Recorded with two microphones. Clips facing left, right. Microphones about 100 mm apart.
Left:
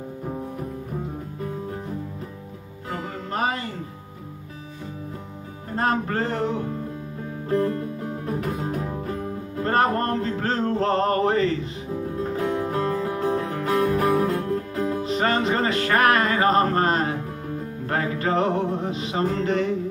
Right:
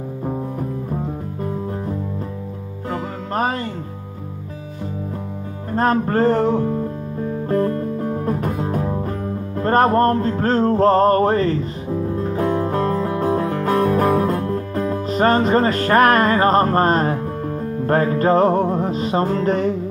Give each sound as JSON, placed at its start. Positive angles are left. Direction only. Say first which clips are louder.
{"t": 2.9, "sound": "music", "louder": "right 5 dB", "side_deg": -45}
{"t": 5.8, "sound": "music", "louder": "right 6 dB", "side_deg": -40}